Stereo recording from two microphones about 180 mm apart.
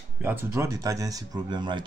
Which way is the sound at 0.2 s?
10° right (ahead or behind).